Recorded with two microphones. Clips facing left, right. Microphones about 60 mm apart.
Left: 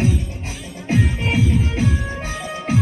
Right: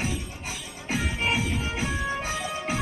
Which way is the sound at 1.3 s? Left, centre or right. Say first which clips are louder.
Left 6 dB; centre.